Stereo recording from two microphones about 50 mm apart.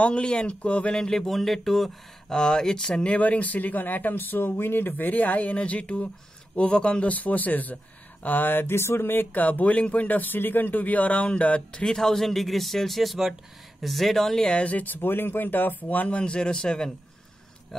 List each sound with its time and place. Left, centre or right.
0.0 s speech: left
0.9 s speech: centre
3.2 s speech: left
8.7 s speech: left; by 14.6 s centre
14.6 s speech: left
16.1 s speech: centre